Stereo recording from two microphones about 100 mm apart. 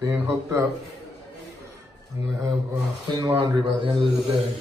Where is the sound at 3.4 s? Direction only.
50° right (ahead or behind).